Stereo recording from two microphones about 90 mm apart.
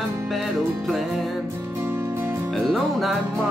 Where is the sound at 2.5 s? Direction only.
Centre (ahead or behind).